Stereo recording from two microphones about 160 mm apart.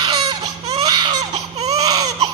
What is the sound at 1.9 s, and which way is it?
Baby cry, 25° right (ahead or behind).